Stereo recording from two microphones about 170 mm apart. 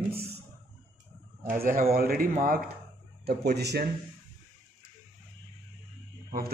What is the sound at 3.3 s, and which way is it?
Speech, 70° right (ahead or behind).